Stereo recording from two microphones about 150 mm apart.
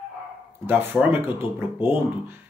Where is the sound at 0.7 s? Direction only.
15° right (ahead or behind).